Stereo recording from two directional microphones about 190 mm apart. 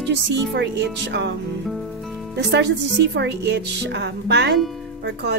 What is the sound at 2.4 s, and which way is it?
Speech, 65° right (ahead or behind).